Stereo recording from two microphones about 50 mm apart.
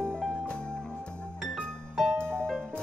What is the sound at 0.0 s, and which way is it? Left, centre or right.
Music, centre.